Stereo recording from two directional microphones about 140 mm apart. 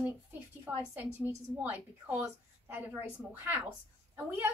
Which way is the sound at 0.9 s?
15° right (ahead or behind).